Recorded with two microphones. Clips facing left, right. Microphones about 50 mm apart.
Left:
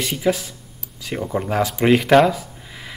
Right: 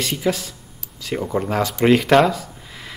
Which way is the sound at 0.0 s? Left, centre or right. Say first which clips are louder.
Left 1 dB; centre.